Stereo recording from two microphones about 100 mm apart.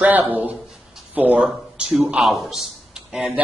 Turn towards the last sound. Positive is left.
turn(degrees=-10)  # may be behind; listen again after turning